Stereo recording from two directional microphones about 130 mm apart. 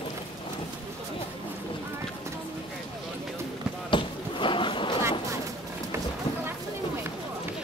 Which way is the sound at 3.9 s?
40° left (ahead or behind).